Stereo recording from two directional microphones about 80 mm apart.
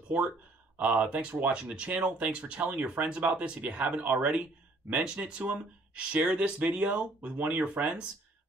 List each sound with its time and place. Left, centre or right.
0.7 s speech: centre